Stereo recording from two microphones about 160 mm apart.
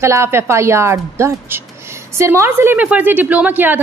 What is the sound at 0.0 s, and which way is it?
A woman's voice, 15° right (ahead or behind).